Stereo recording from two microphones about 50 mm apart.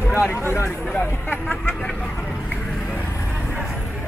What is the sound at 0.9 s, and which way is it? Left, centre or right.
Speech, left.